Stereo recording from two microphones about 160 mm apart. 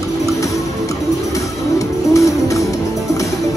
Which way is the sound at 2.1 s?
20° left (ahead or behind).